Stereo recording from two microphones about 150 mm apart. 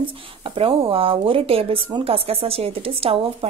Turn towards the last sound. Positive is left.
turn(degrees=-40)  # may be behind; listen again after turning